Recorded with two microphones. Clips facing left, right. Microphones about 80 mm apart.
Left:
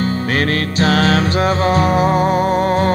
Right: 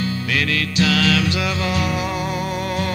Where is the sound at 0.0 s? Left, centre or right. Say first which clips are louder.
Left 5 dB; left.